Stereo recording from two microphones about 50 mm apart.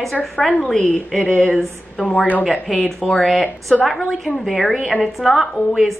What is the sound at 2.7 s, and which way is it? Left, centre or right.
Speech, centre.